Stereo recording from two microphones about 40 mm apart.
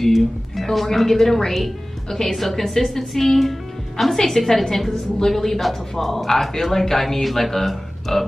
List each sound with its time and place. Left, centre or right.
0.0 s a woman's voice: centre